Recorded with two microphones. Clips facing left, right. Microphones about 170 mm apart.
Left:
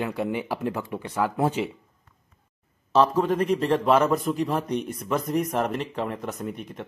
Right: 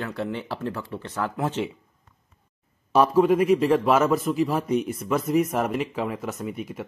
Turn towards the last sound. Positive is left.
turn(degrees=-5)  # may be behind; listen again after turning